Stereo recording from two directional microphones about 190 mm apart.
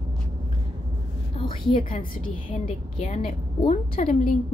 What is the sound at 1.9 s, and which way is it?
Speech, 45° left (ahead or behind).